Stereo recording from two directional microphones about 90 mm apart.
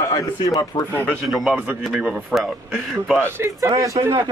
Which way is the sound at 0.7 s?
60° left (ahead or behind).